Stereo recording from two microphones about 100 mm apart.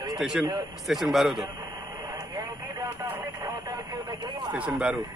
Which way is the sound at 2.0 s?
40° right (ahead or behind).